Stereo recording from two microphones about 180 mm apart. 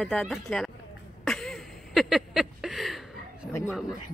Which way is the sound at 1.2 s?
Centre (ahead or behind).